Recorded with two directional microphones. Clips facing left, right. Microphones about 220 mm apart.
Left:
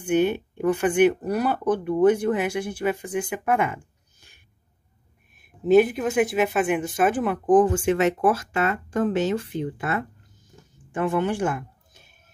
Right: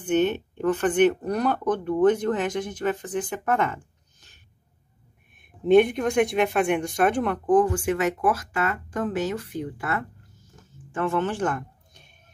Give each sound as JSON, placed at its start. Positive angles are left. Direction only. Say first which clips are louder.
{"t": 0.0, "sound": "speech", "louder": "left 1 dB", "side_deg": 10}
{"t": 5.4, "sound": "speech", "louder": "even", "side_deg": 5}
{"t": 7.4, "sound": "speech", "louder": "left 3 dB", "side_deg": 20}